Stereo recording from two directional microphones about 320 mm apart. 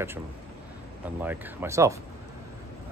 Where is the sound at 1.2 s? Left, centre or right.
Centre.